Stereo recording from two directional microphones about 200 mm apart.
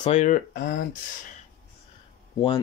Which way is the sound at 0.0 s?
35° left (ahead or behind).